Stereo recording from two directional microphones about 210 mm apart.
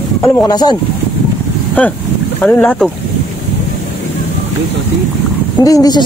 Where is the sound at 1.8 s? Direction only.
5° left (ahead or behind).